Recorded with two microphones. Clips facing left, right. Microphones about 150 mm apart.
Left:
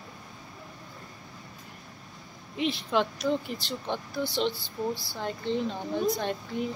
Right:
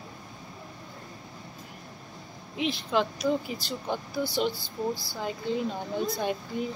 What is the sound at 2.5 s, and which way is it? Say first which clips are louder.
A woman's voice: even; centre (ahead or behind).